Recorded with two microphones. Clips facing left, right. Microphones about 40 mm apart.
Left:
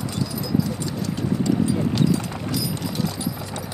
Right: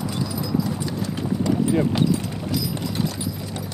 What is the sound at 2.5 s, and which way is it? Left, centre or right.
Music, centre.